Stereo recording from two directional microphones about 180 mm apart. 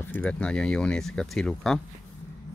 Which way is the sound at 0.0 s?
10° left (ahead or behind).